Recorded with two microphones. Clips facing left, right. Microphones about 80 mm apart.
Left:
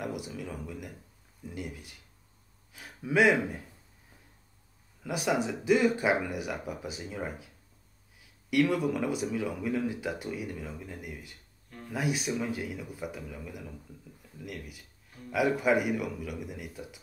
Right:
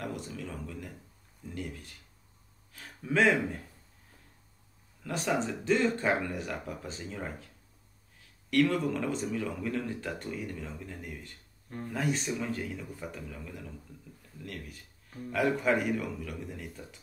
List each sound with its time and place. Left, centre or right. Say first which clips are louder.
0.0 s speech: left 2 dB; centre
5.0 s speech: left 2 dB; centre